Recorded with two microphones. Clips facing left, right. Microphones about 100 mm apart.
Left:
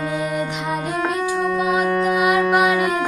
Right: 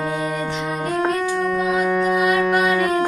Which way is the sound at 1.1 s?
10° left (ahead or behind).